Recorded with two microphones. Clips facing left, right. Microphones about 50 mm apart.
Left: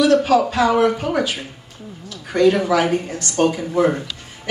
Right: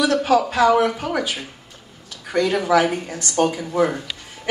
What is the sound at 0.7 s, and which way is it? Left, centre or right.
Speech, left.